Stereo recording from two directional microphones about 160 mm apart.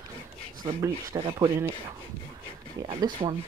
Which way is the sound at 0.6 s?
25° right (ahead or behind).